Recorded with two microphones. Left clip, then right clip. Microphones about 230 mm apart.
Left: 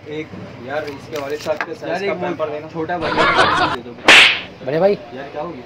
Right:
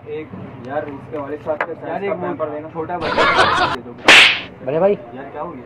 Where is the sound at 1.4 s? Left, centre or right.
Left.